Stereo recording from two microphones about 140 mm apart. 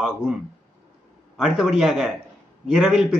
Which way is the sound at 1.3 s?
5° right (ahead or behind).